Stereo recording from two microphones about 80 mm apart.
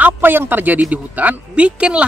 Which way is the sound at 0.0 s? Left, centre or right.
Right.